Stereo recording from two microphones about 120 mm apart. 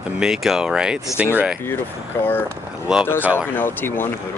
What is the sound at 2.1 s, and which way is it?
Speech, 20° left (ahead or behind).